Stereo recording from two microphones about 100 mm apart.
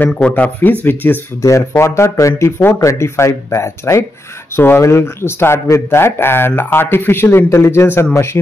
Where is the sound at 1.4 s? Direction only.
30° left (ahead or behind).